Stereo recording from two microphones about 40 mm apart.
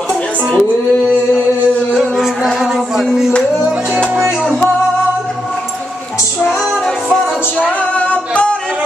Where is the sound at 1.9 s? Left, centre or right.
Centre.